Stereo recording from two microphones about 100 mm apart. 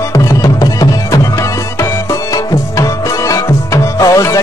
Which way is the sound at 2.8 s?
30° left (ahead or behind).